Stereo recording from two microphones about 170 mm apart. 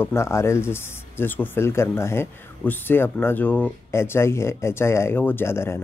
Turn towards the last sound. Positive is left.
turn(degrees=15)  # may be behind; listen again after turning